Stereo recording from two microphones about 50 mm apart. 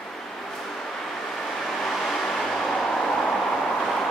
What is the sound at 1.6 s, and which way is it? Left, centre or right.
Vehicle, centre.